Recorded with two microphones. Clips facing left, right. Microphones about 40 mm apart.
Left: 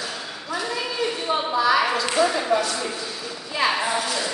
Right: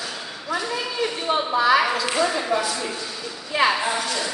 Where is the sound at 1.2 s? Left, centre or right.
Right.